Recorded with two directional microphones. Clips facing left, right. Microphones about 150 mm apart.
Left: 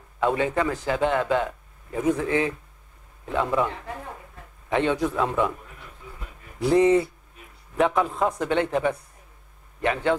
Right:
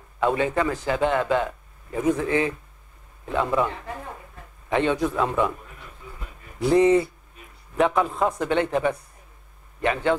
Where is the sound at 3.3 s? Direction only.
40° right (ahead or behind).